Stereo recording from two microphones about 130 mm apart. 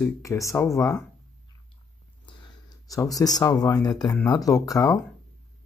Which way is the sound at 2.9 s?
25° left (ahead or behind).